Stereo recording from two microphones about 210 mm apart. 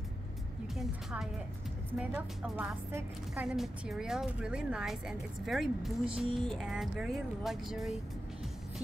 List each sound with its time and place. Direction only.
0.7 s a woman's voice: centre (ahead or behind)
6.2 s speech: 25° right (ahead or behind)
6.5 s a woman's voice: centre (ahead or behind)